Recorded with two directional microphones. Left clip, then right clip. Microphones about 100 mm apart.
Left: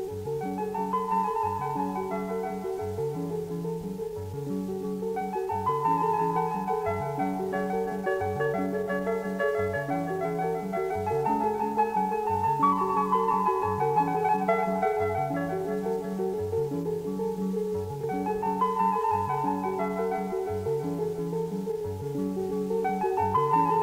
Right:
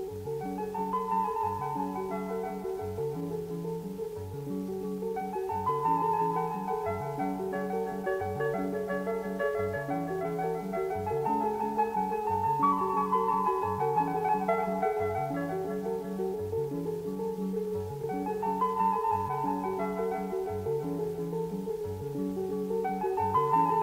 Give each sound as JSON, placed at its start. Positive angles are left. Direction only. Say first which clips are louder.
{"t": 0.9, "sound": "music", "louder": "left 3 dB", "side_deg": 35}
{"t": 5.7, "sound": "music", "louder": "left 2 dB", "side_deg": 40}
{"t": 9.4, "sound": "music", "louder": "left 3 dB", "side_deg": 35}
{"t": 11.1, "sound": "music", "louder": "left 3 dB", "side_deg": 40}
{"t": 18.6, "sound": "music", "louder": "left 2 dB", "side_deg": 40}
{"t": 22.8, "sound": "music", "louder": "left 4 dB", "side_deg": 45}